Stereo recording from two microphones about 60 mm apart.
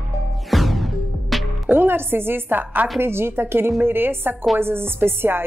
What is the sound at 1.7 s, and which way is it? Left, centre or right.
A woman's voice, right.